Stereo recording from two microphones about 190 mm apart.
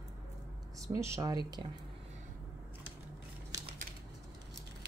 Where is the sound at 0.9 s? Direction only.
15° right (ahead or behind).